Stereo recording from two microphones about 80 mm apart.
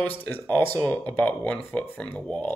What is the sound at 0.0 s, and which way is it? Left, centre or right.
Speech, left.